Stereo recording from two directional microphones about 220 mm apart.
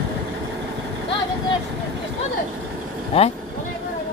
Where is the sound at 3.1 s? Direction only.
25° left (ahead or behind).